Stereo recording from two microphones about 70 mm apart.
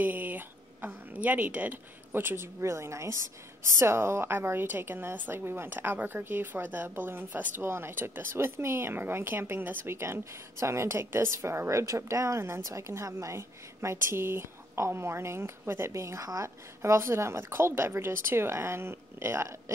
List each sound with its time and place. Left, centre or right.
0.0 s a woman's voice: right